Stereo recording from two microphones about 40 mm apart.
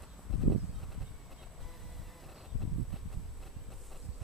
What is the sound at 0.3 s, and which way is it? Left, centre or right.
Horse, centre.